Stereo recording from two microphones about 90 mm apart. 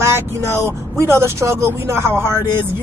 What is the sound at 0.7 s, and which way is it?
Speech, 30° right (ahead or behind).